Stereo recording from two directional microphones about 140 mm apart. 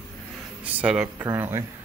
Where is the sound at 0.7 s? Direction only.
5° right (ahead or behind).